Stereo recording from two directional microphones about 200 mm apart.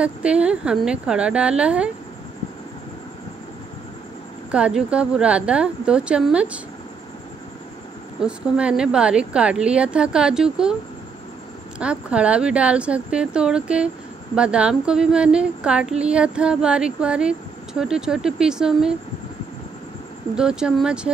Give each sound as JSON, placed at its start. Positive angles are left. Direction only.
{"t": 0.0, "sound": "speech", "side_deg": -5}
{"t": 4.5, "sound": "speech", "side_deg": -5}
{"t": 8.2, "sound": "speech", "side_deg": -5}
{"t": 11.8, "sound": "speech", "side_deg": -5}
{"t": 20.3, "sound": "speech", "side_deg": -5}